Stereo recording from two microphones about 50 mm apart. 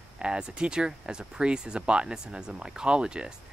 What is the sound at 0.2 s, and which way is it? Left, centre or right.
Speech, centre.